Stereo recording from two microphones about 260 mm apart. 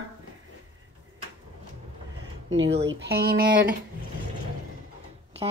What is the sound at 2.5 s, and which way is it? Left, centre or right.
Speech, right.